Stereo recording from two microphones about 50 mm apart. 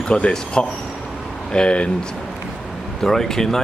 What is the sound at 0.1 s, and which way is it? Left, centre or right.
Speech, centre.